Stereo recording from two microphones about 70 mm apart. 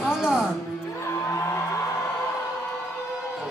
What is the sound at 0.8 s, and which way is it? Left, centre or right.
Music, left.